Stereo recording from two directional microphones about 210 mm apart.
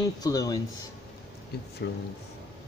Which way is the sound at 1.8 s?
55° left (ahead or behind).